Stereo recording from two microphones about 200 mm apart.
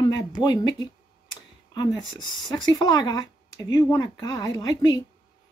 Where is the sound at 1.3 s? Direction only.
20° left (ahead or behind).